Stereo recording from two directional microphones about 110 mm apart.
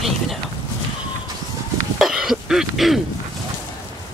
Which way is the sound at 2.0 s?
5° right (ahead or behind).